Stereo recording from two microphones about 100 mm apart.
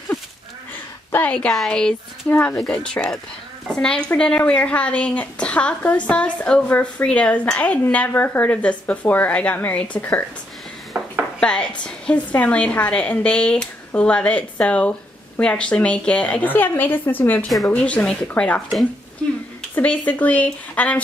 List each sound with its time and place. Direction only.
1.1 s a woman's voice: 15° left (ahead or behind)
1.5 s speech: 5° left (ahead or behind)
10.9 s dishes: 20° right (ahead or behind)
11.3 s speech: 10° left (ahead or behind)